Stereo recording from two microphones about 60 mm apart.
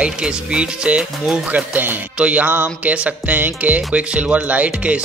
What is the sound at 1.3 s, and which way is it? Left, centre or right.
Music, right.